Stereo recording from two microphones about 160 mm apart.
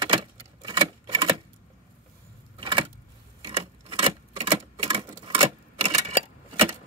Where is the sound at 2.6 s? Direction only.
35° right (ahead or behind).